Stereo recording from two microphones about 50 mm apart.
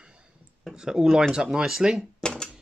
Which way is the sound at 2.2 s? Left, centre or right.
Centre.